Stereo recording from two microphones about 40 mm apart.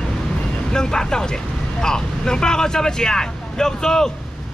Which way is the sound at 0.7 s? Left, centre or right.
Centre.